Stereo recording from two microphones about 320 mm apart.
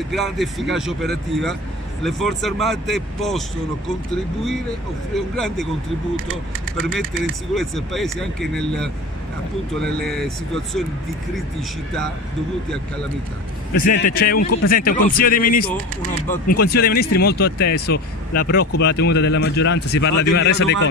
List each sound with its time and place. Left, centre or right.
0.1 s speech: centre
5.1 s speech: centre
6.8 s speech: centre
13.9 s speech: left